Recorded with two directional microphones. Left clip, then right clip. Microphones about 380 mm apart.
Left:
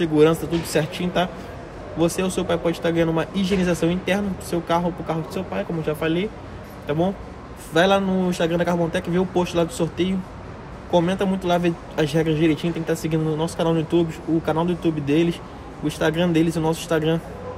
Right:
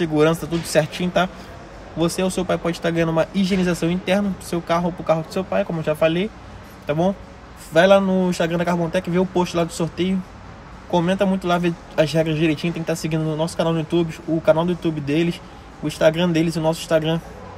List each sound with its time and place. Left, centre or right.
0.0 s speech: centre
7.7 s speech: centre